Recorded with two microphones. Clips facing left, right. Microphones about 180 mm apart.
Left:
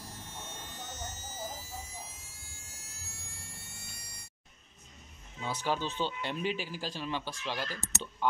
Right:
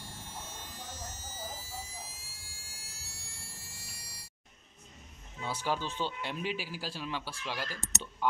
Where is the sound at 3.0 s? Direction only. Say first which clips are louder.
Left 3 dB; 35° right (ahead or behind).